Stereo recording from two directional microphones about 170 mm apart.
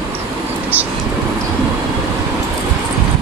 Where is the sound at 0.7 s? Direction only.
10° right (ahead or behind).